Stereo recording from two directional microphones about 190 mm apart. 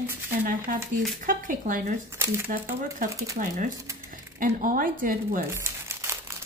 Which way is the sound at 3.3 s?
45° right (ahead or behind).